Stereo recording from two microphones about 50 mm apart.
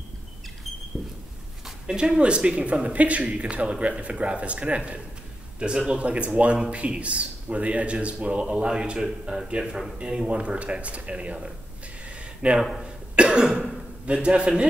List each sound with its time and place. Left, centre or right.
1.9 s a man's voice: centre
12.8 s cough: right
14.0 s a man's voice: right